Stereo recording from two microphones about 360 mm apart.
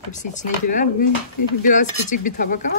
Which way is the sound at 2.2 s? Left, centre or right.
Left.